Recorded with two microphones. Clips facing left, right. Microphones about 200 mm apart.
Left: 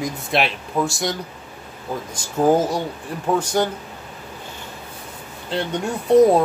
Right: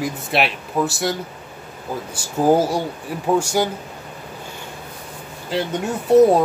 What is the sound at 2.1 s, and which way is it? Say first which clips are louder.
Speech: right 1 dB; 10° right (ahead or behind).